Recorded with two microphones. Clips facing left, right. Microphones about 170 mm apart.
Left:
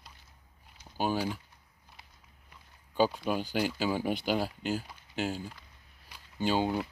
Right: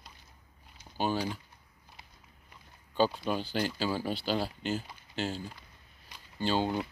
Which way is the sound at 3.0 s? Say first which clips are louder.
Left 1 dB; 5° left (ahead or behind).